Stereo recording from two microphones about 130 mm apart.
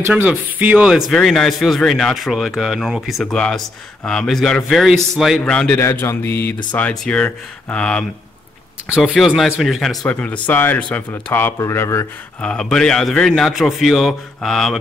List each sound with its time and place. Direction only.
0.1 s a man's voice: 10° right (ahead or behind); by 5.8 s 10° left (ahead or behind)
5.8 s a man's voice: 20° left (ahead or behind)
8.9 s a man's voice: 5° right (ahead or behind)
10.0 s a man's voice: 10° left (ahead or behind)
12.4 s a man's voice: 5° left (ahead or behind)